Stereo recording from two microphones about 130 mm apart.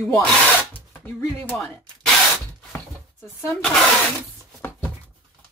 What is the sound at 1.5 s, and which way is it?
Speech, 5° left (ahead or behind).